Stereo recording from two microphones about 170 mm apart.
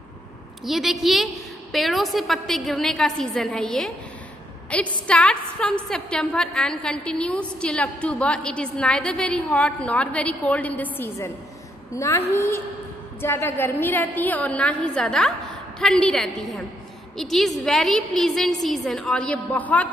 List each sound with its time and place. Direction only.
0.7 s a woman's voice: centre (ahead or behind)